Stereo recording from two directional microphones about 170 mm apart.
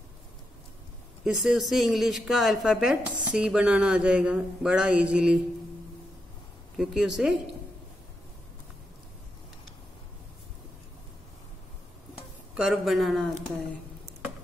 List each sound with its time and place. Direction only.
1.2 s speech: 5° right (ahead or behind)
6.8 s speech: centre (ahead or behind)
12.5 s speech: centre (ahead or behind)